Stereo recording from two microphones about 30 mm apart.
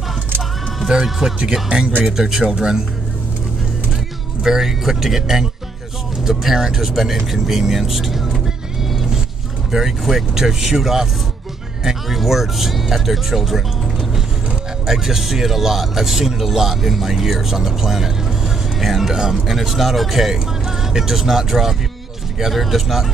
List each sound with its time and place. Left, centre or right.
0.8 s speech: centre
2.5 s speech: right
4.4 s speech: centre
8.8 s vehicle: centre
9.7 s speech: centre
14.9 s speech: centre
19.4 s speech: centre
20.6 s vehicle: centre
21.1 s speech: centre